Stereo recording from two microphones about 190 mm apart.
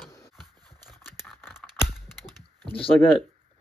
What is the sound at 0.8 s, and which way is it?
Scissors, centre (ahead or behind).